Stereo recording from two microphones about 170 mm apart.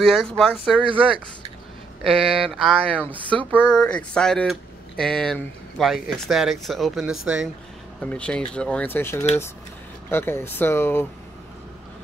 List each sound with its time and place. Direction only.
0.0 s speech: centre (ahead or behind)
0.8 s speech: 30° right (ahead or behind)
2.4 s speech: centre (ahead or behind)